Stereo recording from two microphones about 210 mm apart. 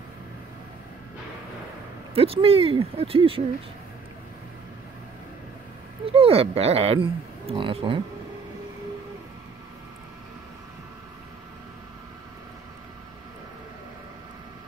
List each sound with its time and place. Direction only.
2.1 s speech: 25° right (ahead or behind)
6.0 s speech: 25° right (ahead or behind)